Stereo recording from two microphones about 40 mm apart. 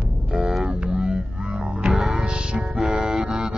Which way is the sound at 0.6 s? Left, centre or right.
Right.